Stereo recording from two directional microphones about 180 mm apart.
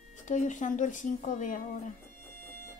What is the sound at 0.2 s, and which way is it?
Speech, 45° left (ahead or behind).